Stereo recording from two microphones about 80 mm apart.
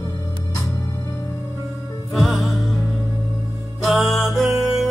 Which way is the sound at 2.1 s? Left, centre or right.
Centre.